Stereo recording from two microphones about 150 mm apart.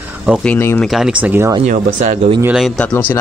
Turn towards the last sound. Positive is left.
turn(degrees=10)  # may be behind; listen again after turning